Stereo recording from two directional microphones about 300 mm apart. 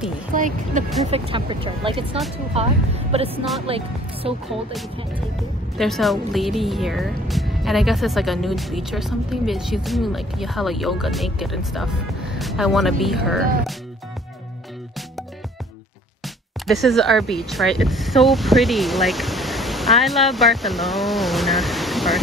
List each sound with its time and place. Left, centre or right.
0.3 s speech: right
5.8 s speech: centre
16.6 s speech: centre